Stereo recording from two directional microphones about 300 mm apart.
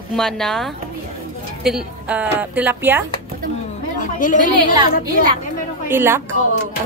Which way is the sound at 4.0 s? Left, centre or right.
Left.